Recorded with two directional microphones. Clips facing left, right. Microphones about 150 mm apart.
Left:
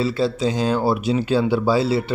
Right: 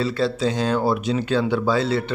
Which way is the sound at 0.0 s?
Centre (ahead or behind).